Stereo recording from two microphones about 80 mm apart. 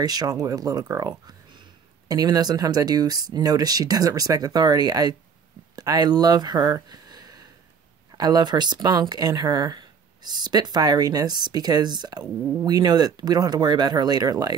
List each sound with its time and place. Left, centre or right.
0.0 s speech: right